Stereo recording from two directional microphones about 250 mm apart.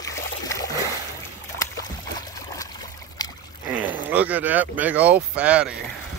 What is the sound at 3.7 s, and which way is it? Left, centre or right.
Speech, centre.